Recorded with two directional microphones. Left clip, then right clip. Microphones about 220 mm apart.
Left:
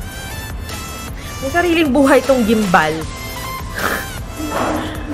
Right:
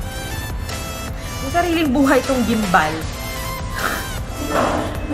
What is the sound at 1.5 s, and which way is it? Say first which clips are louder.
Speech: left 3 dB; 40° left (ahead or behind).